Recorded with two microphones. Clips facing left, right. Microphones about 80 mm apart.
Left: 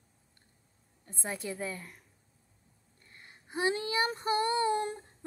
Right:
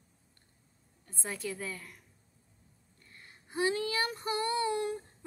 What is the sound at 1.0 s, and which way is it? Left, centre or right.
Speech, left.